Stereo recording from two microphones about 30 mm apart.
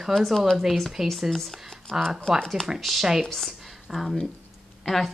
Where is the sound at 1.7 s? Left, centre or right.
Centre.